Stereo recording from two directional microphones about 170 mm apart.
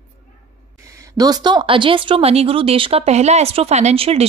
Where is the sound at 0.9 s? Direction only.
20° right (ahead or behind).